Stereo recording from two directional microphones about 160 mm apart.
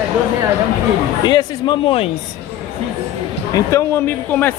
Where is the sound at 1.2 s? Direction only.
30° left (ahead or behind).